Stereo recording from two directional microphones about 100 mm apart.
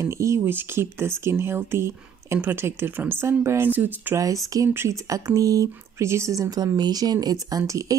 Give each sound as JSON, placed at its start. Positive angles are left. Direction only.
{"t": 0.0, "sound": "speech", "side_deg": -30}
{"t": 4.2, "sound": "speech", "side_deg": -35}